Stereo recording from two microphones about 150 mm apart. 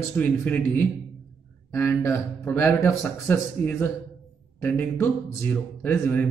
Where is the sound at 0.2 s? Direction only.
10° left (ahead or behind).